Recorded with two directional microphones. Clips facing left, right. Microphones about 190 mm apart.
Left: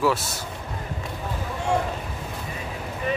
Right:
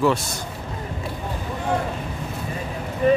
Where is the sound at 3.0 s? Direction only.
40° right (ahead or behind).